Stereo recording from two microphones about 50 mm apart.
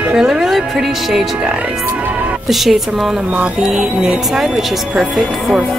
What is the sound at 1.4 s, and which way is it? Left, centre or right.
Speech, centre.